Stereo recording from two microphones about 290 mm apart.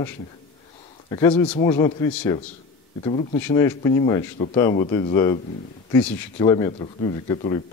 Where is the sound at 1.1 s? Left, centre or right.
Centre.